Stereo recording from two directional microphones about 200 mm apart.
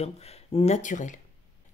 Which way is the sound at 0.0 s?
30° left (ahead or behind).